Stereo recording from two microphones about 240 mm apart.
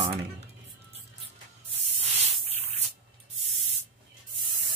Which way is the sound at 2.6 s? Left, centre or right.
Right.